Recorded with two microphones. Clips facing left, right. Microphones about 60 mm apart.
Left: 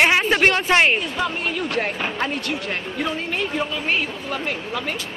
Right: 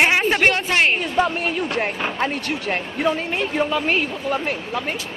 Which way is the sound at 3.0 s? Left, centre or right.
Centre.